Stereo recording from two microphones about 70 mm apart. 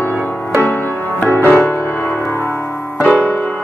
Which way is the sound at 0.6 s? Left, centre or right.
Left.